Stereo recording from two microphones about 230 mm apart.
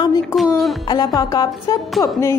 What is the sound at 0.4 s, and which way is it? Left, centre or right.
Music, centre.